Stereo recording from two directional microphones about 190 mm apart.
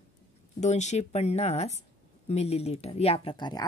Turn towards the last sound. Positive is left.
turn(degrees=25)  # may be behind; listen again after turning